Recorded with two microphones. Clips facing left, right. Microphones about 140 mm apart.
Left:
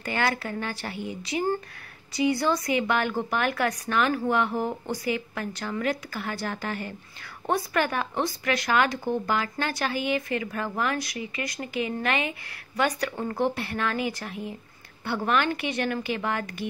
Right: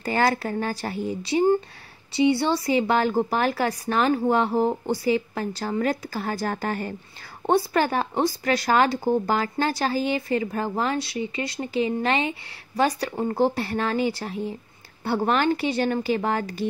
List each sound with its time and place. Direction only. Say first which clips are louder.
0.0 s speech: right 5 dB; 35° right (ahead or behind)
7.4 s speech: right 5 dB; 30° right (ahead or behind)